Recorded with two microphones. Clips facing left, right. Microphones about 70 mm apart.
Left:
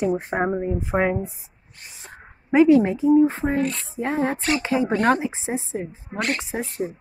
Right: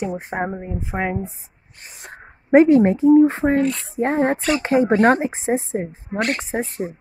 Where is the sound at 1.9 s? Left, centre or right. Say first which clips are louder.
Right 4 dB; right.